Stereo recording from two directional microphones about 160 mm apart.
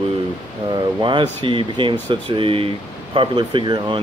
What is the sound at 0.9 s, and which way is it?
Speech, 30° right (ahead or behind).